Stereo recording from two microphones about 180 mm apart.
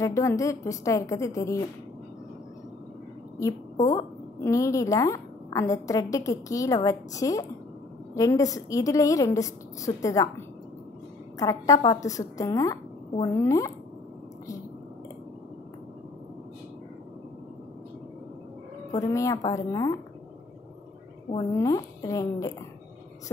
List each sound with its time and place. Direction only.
0.0 s a woman's voice: 15° left (ahead or behind)
3.9 s a woman's voice: 15° left (ahead or behind)
18.9 s a woman's voice: 15° left (ahead or behind)
21.5 s a woman's voice: 15° left (ahead or behind)